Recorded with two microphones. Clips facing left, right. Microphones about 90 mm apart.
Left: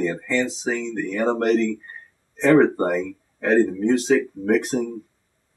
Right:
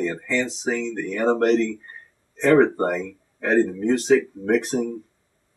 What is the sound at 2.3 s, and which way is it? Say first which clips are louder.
Speech: left 1 dB; centre (ahead or behind).